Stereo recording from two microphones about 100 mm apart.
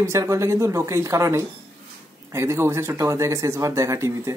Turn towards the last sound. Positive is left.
turn(degrees=-30)  # may be behind; listen again after turning